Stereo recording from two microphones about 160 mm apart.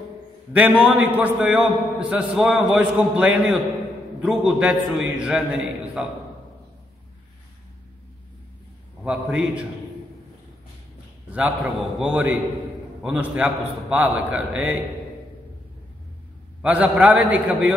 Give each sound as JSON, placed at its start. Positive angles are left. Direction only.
{"t": 0.5, "sound": "a man's voice", "side_deg": -10}
{"t": 9.0, "sound": "a man's voice", "side_deg": -5}
{"t": 11.3, "sound": "a man's voice", "side_deg": -10}
{"t": 16.6, "sound": "a man's voice", "side_deg": -10}